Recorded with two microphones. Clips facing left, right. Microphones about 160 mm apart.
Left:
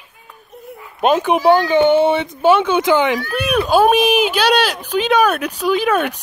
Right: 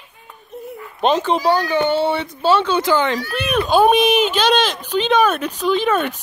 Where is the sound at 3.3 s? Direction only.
5° left (ahead or behind).